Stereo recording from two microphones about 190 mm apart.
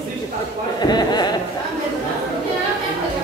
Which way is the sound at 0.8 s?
20° left (ahead or behind).